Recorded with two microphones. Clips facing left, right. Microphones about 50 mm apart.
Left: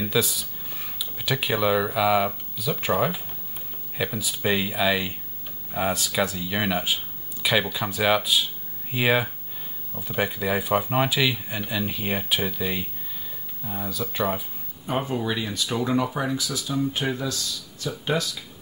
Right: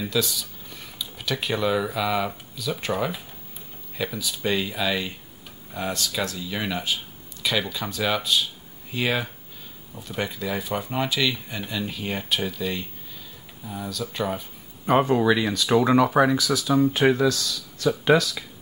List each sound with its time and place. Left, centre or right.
0.0 s speech: centre
14.9 s speech: right